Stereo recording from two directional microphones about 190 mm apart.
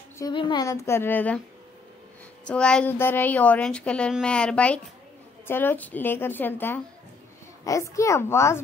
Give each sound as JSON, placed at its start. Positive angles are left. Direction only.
{"t": 0.2, "sound": "a woman's voice", "side_deg": 25}
{"t": 2.4, "sound": "a woman's voice", "side_deg": 5}